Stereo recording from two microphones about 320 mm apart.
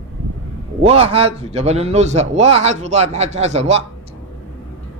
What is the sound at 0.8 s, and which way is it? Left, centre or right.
A man's voice, centre.